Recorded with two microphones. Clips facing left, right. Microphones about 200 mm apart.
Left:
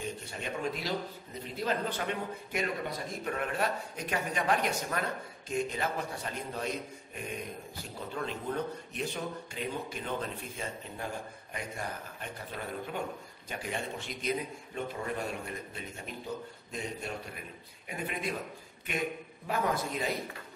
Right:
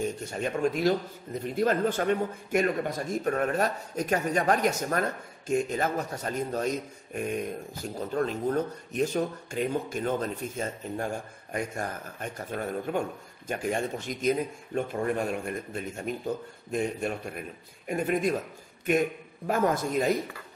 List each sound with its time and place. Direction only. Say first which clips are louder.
0.0 s speech: right 8 dB; 45° right (ahead or behind)
19.4 s speech: right 6 dB; 45° right (ahead or behind)